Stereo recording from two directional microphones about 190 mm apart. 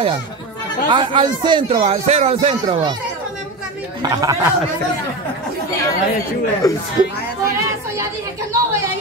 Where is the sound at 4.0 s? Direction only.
20° right (ahead or behind).